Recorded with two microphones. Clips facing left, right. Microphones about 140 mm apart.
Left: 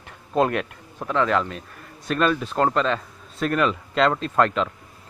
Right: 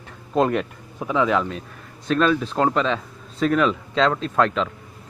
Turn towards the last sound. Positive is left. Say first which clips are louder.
# even
turn(degrees=5)  # may be behind; listen again after turning